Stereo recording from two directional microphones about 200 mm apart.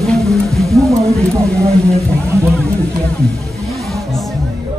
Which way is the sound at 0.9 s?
15° right (ahead or behind).